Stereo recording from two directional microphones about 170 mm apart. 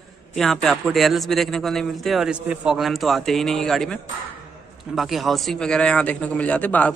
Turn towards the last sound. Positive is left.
turn(degrees=10)  # may be behind; listen again after turning